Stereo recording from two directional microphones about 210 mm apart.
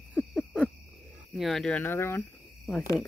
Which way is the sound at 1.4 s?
Centre (ahead or behind).